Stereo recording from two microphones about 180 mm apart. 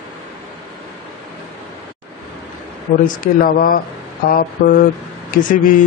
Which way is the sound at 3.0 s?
50° left (ahead or behind).